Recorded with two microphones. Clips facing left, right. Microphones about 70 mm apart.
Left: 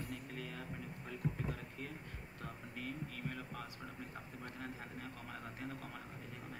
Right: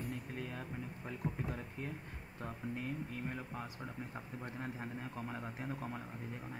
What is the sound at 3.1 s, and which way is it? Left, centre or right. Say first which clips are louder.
Speech: right 3 dB; right.